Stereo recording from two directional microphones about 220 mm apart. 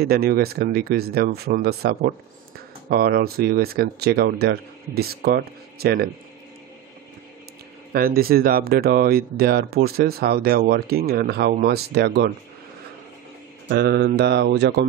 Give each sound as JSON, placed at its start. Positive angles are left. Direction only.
{"t": 0.0, "sound": "speech", "side_deg": -45}
{"t": 7.9, "sound": "speech", "side_deg": -45}
{"t": 13.7, "sound": "speech", "side_deg": -45}